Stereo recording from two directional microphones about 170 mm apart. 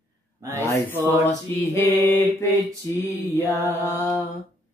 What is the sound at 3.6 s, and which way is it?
Music, 15° left (ahead or behind).